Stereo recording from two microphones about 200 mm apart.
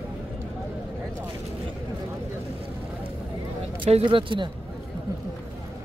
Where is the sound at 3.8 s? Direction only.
30° right (ahead or behind).